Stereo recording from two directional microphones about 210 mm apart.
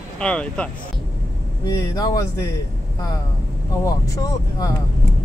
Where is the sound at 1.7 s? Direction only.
15° left (ahead or behind).